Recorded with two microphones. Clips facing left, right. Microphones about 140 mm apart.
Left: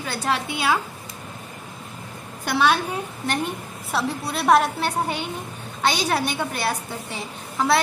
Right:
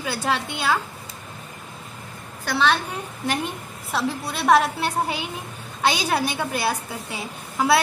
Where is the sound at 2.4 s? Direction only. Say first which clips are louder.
Left 1 dB; 15° left (ahead or behind).